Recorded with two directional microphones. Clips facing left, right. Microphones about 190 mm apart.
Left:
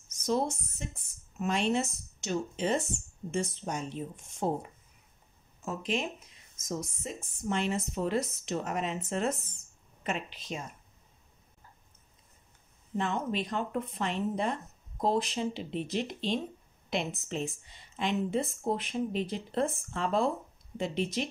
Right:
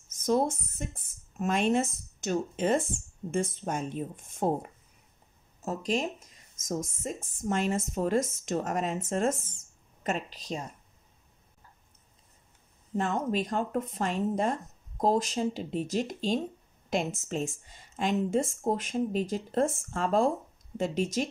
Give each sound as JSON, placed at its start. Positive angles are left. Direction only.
{"t": 0.2, "sound": "speech", "side_deg": -50}
{"t": 5.6, "sound": "speech", "side_deg": -40}
{"t": 12.9, "sound": "speech", "side_deg": -45}